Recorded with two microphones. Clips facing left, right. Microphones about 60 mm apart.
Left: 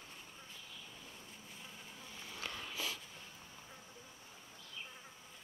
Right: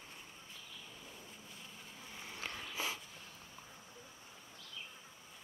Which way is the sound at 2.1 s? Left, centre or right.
Right.